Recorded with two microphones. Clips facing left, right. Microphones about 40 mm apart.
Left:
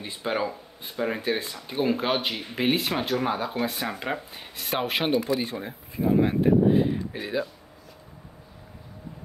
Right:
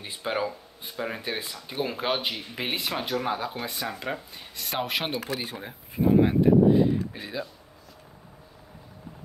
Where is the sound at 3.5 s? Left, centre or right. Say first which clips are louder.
Left 4 dB; left.